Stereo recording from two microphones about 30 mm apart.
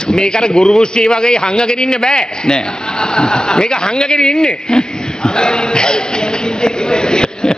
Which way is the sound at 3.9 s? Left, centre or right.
Centre.